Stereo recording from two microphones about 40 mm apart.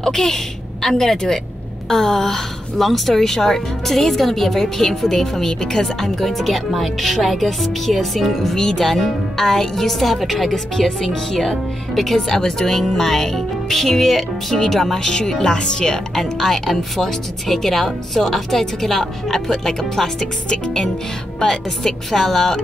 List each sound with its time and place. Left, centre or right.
0.0 s a woman's voice: centre
15.0 s a woman's voice: centre
16.2 s a woman's voice: centre
20.4 s a woman's voice: left